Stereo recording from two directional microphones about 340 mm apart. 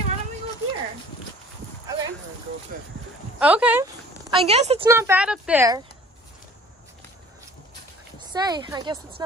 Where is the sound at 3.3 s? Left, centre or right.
Centre.